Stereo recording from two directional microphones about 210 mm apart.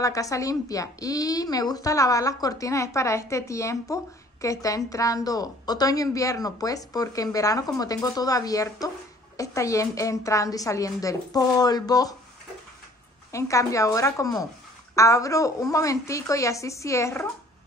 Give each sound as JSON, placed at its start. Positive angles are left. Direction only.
{"t": 0.0, "sound": "a woman's voice", "side_deg": 15}
{"t": 13.3, "sound": "a woman's voice", "side_deg": 15}